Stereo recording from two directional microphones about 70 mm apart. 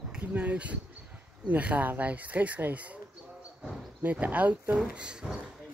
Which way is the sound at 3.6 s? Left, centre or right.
Centre.